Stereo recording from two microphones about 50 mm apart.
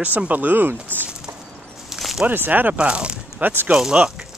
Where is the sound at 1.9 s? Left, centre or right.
Centre.